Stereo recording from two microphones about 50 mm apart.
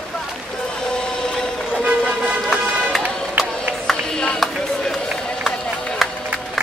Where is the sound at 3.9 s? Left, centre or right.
Centre.